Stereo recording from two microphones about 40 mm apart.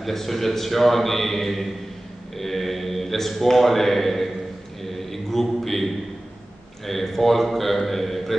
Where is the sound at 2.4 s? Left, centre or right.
Centre.